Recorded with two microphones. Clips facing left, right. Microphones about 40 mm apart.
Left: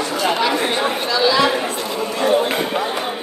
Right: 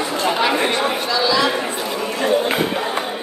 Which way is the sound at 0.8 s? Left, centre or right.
Centre.